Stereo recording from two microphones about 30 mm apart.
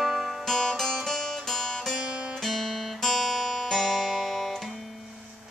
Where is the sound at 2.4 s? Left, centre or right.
Centre.